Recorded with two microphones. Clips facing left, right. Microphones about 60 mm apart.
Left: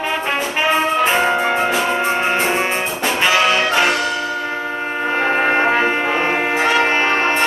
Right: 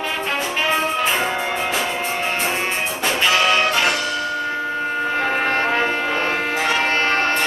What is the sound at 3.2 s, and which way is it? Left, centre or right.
Music, centre.